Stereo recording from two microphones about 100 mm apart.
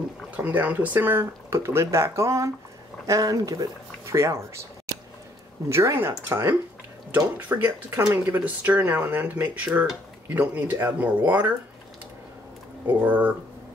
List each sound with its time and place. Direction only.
0.4 s speech: 15° right (ahead or behind)
5.7 s speech: 30° right (ahead or behind)
12.8 s speech: 20° right (ahead or behind)